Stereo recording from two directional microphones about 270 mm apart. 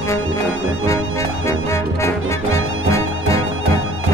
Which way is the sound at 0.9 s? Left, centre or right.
Centre.